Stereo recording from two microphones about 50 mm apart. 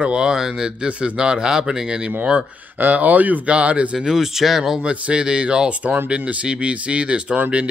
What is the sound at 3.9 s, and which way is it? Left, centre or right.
Speech, centre.